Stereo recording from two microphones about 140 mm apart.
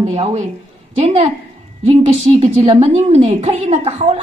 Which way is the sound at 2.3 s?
50° right (ahead or behind).